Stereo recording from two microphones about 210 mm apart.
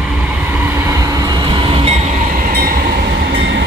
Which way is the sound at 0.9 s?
15° right (ahead or behind).